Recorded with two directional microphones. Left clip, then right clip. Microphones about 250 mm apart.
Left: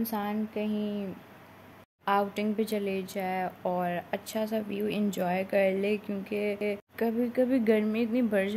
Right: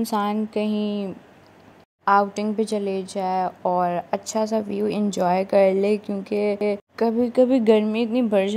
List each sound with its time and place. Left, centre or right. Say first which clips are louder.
0.0 s speech: right 9 dB; right
2.0 s speech: right 9 dB; centre